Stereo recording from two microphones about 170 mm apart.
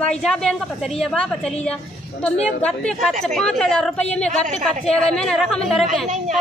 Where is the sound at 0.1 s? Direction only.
5° left (ahead or behind).